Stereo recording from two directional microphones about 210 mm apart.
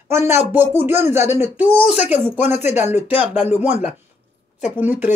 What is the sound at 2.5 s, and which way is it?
Speech, 35° left (ahead or behind).